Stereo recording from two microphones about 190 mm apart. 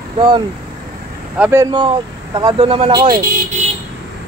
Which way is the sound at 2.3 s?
25° right (ahead or behind).